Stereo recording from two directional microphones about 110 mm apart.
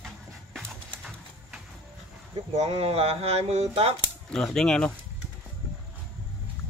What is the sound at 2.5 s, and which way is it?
Speech, 75° right (ahead or behind).